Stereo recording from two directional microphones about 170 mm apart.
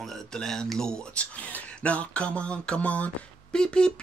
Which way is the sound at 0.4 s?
Centre (ahead or behind).